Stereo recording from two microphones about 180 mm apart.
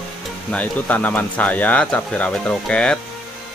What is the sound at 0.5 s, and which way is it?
Speech, 10° left (ahead or behind).